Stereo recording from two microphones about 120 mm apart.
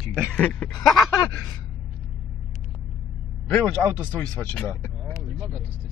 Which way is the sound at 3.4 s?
15° left (ahead or behind).